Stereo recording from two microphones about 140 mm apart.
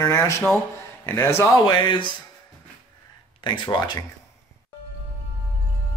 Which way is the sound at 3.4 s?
35° left (ahead or behind).